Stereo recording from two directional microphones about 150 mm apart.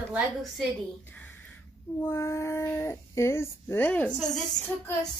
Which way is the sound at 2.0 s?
15° left (ahead or behind).